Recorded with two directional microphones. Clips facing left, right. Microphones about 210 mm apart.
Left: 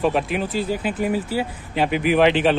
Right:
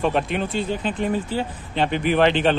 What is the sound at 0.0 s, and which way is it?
Speech, 5° left (ahead or behind).